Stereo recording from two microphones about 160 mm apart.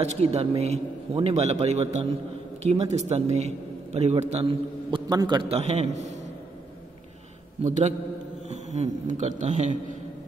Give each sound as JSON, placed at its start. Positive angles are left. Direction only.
{"t": 0.0, "sound": "a man's voice", "side_deg": -40}
{"t": 7.6, "sound": "a man's voice", "side_deg": -50}